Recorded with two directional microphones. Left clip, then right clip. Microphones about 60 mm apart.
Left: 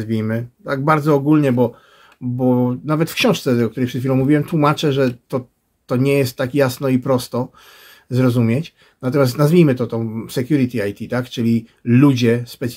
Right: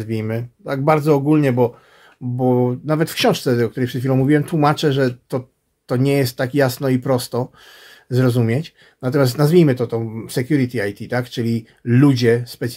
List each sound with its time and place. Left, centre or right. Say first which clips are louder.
0.0 s speech: left 2 dB; right
4.1 s speech: even; right